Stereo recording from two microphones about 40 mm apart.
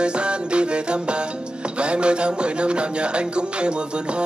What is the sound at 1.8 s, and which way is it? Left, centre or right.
Music, right.